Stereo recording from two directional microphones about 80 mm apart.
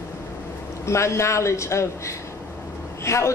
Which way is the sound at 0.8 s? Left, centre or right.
Left.